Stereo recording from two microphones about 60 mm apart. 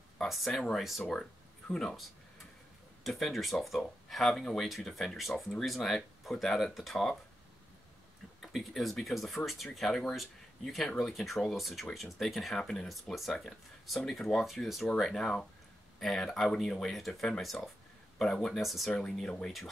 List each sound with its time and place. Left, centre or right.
0.2 s speech: centre
3.0 s speech: centre
8.4 s speech: centre
18.9 s speech: centre